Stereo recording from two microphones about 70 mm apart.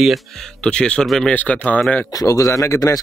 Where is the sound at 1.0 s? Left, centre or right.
Centre.